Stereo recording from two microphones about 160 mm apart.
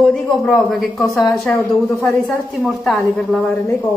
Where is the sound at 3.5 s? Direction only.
15° left (ahead or behind).